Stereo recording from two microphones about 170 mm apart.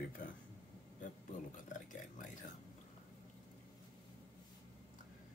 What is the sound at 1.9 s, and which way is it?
Speech, 50° left (ahead or behind).